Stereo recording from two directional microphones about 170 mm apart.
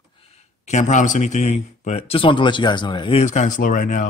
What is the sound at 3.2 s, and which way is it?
Speech, 45° left (ahead or behind).